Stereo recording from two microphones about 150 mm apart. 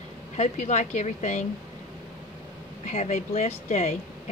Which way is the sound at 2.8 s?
45° left (ahead or behind).